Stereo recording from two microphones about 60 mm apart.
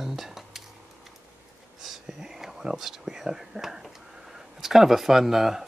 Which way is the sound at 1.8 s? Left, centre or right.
Centre.